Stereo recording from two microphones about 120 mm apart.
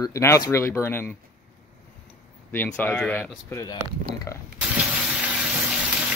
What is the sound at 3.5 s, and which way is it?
Speech, 25° left (ahead or behind).